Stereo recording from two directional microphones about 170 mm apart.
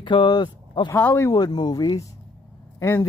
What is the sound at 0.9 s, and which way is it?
Speech, 15° left (ahead or behind).